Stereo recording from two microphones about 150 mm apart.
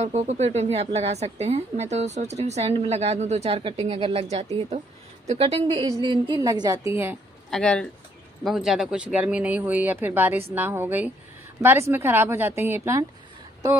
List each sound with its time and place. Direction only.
0.0 s a woman's voice: 50° right (ahead or behind); by 7.2 s 15° right (ahead or behind)
7.5 s speech: 5° left (ahead or behind); by 13.0 s 15° right (ahead or behind)